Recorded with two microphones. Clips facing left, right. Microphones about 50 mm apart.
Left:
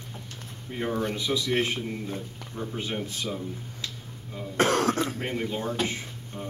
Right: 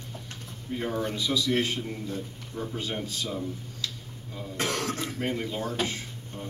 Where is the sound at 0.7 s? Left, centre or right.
Left.